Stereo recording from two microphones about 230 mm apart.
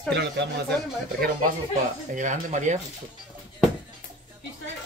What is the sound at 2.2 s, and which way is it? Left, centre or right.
Speech, right.